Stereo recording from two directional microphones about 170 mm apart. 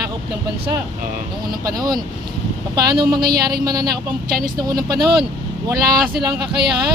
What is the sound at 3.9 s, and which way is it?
Speech, 60° right (ahead or behind).